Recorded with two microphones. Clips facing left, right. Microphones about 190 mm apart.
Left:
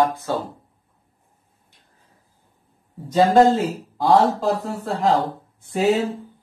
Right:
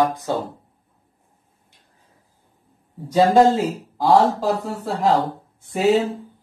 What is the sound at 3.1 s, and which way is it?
Speech, centre (ahead or behind).